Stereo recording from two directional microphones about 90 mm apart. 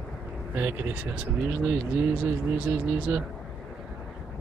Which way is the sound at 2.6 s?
15° right (ahead or behind).